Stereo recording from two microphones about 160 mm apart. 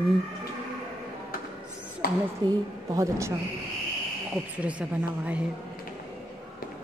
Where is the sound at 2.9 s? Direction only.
20° right (ahead or behind).